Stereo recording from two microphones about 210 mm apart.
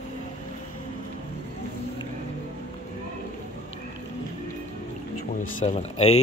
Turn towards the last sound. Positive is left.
turn(degrees=30)  # may be behind; listen again after turning